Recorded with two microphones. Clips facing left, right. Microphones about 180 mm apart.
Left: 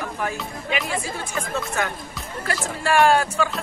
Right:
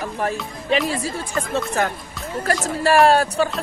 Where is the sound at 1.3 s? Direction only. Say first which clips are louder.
Right 4 dB; 40° right (ahead or behind).